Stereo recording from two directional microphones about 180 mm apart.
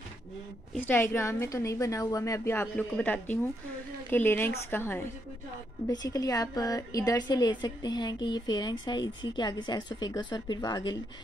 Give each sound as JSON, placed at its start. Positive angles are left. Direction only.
{"t": 0.7, "sound": "a woman's voice", "side_deg": 10}